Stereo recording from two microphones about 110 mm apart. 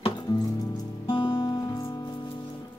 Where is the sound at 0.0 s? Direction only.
40° left (ahead or behind).